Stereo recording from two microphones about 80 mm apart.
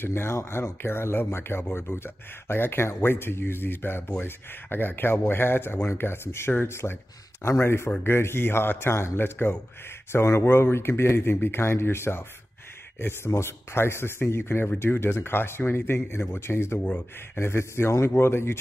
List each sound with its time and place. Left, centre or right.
0.0 s speech: left